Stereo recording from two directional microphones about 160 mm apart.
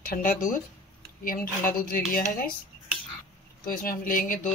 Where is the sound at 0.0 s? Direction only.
60° left (ahead or behind).